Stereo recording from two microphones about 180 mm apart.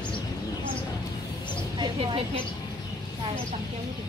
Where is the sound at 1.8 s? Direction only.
30° right (ahead or behind).